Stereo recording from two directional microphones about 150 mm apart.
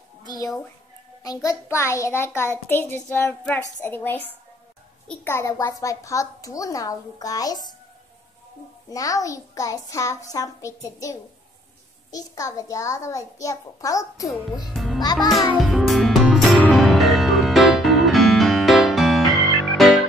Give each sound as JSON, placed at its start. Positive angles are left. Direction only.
{"t": 1.2, "sound": "a child's voice", "side_deg": 25}
{"t": 5.2, "sound": "a child's voice", "side_deg": 20}
{"t": 8.9, "sound": "a child's voice", "side_deg": 20}
{"t": 14.7, "sound": "music", "side_deg": 0}
{"t": 15.1, "sound": "a child's voice", "side_deg": 0}
{"t": 15.6, "sound": "music", "side_deg": 0}